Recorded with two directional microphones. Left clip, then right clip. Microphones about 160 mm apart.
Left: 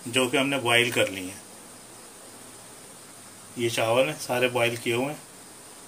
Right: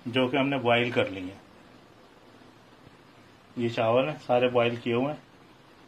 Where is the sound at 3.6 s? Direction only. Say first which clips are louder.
Left 2 dB; 30° right (ahead or behind).